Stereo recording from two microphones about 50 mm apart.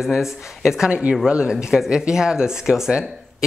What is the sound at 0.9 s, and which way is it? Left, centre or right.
A man's voice, right.